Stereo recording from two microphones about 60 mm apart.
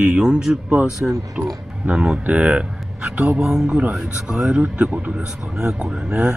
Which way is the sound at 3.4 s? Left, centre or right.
Centre.